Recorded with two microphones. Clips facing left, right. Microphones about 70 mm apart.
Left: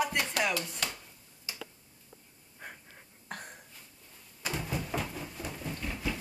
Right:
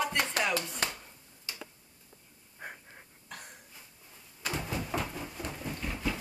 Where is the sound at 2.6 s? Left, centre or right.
Centre.